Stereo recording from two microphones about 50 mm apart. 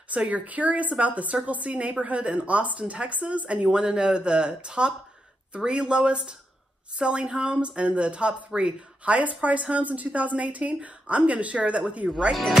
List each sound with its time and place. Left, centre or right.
0.1 s speech: right
12.3 s speech: centre